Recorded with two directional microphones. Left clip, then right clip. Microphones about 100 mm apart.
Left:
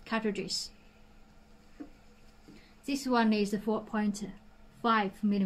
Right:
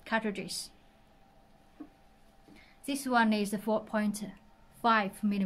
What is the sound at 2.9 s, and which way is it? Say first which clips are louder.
A woman's voice: right 1 dB; 65° right (ahead or behind).